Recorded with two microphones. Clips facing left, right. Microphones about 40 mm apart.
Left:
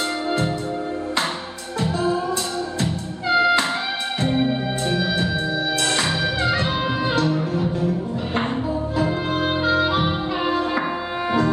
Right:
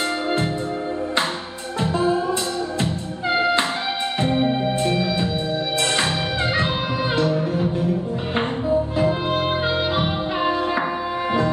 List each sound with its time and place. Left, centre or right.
1.8 s music: right
4.4 s music: right
6.4 s music: right
8.9 s music: right